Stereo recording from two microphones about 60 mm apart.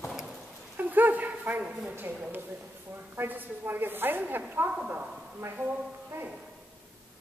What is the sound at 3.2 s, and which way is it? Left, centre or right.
A woman's voice, right.